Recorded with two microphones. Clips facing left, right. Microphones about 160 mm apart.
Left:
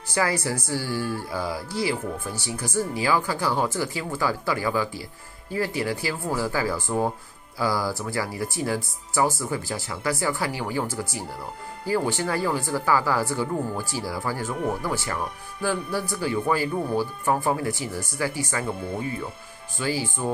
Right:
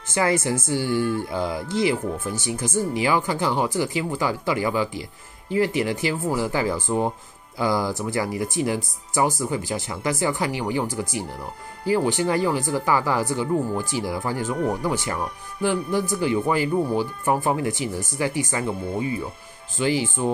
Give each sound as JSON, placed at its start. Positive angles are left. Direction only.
{"t": 0.1, "sound": "speech", "side_deg": -20}
{"t": 19.8, "sound": "speech", "side_deg": -20}